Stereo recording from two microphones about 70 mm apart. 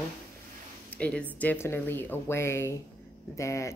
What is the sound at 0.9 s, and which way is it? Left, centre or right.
Speech, centre.